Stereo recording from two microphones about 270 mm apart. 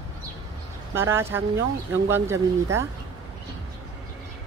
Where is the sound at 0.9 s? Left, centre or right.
Centre.